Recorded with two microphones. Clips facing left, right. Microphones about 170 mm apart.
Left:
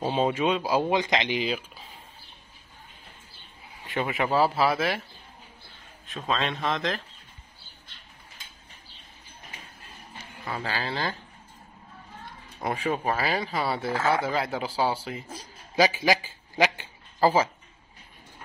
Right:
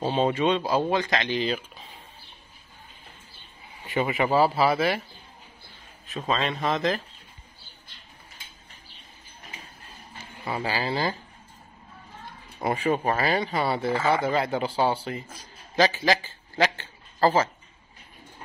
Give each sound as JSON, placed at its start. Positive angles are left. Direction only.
{"t": 0.0, "sound": "speech", "side_deg": 5}
{"t": 3.6, "sound": "speech", "side_deg": 0}
{"t": 6.0, "sound": "speech", "side_deg": 0}
{"t": 10.1, "sound": "speech", "side_deg": -10}
{"t": 12.5, "sound": "speech", "side_deg": 0}
{"t": 15.7, "sound": "a sound", "side_deg": 10}